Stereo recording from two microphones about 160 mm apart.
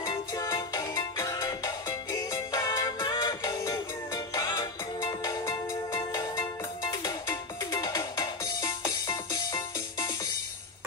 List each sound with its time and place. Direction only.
0.0 s music: 25° left (ahead or behind)